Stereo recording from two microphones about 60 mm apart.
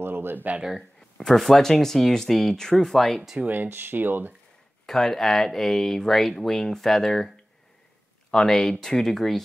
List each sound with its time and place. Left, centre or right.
0.0 s speech: right
0.6 s speech: centre
1.1 s speech: centre
3.3 s speech: right
4.8 s speech: centre